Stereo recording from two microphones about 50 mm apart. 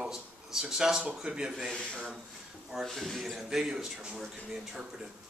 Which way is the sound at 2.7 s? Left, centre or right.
Centre.